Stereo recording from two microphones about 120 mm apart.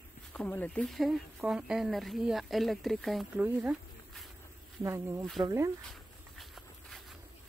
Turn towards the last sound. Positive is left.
turn(degrees=0)  # may be behind; listen again after turning